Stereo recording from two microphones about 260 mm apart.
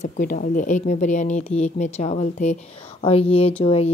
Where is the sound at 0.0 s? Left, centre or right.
Left.